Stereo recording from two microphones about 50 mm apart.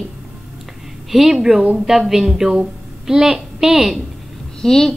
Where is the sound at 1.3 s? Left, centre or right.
Centre.